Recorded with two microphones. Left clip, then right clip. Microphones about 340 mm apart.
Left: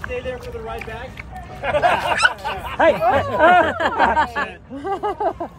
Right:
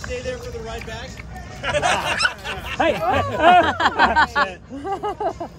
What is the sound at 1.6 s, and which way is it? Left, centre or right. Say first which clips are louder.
Speech: left 3 dB; centre.